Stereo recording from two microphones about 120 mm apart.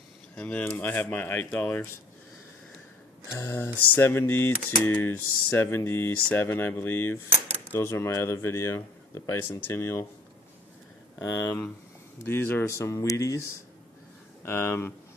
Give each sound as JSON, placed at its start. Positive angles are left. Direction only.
{"t": 0.4, "sound": "speech", "side_deg": 10}
{"t": 3.3, "sound": "typing", "side_deg": 20}
{"t": 11.1, "sound": "typing", "side_deg": 25}
{"t": 14.4, "sound": "typing", "side_deg": 20}